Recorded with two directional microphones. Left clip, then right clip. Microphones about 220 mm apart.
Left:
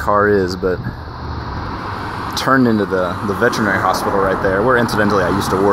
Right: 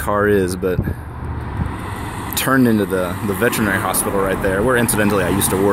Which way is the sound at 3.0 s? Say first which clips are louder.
Left 3 dB; 25° right (ahead or behind).